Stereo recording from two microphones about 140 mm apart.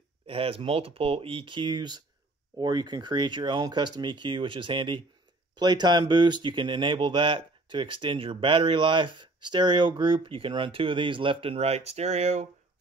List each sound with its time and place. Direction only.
0.3 s speech: 40° right (ahead or behind)